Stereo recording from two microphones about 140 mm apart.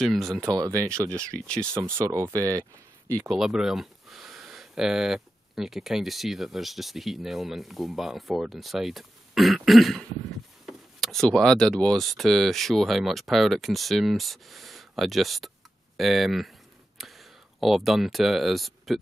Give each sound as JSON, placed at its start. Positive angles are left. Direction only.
{"t": 0.0, "sound": "speech", "side_deg": 0}
{"t": 0.5, "sound": "speech", "side_deg": -25}
{"t": 1.1, "sound": "speech", "side_deg": 5}
{"t": 2.0, "sound": "speech", "side_deg": -25}
{"t": 3.3, "sound": "speech", "side_deg": 0}